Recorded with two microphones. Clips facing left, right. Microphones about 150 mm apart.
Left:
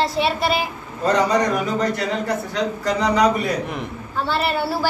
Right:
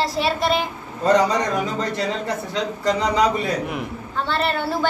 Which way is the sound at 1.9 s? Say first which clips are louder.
Left 1 dB; 25° right (ahead or behind).